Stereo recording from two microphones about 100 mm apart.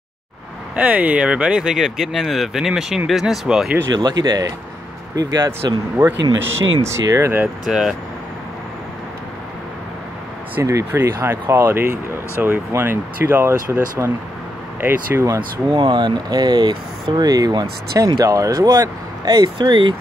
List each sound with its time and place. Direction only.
0.7 s speech: 15° right (ahead or behind)
3.9 s speech: 45° right (ahead or behind)
6.4 s speech: 30° right (ahead or behind)
7.6 s speech: 5° right (ahead or behind)
10.6 s speech: 30° right (ahead or behind)
15.7 s speech: 50° right (ahead or behind)